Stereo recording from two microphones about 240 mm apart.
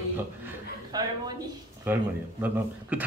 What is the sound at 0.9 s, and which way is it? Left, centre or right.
A woman's voice, centre.